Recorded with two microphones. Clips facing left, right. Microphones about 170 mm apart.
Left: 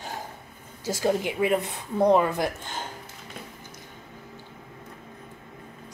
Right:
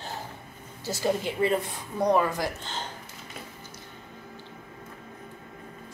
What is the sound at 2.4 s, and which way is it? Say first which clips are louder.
Speech: left 3 dB; 10° left (ahead or behind).